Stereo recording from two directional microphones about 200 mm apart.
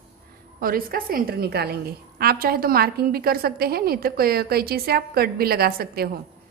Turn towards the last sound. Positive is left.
turn(degrees=-50)  # may be behind; listen again after turning